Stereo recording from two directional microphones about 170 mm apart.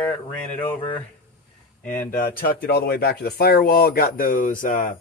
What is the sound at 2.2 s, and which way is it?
Speech, 60° left (ahead or behind).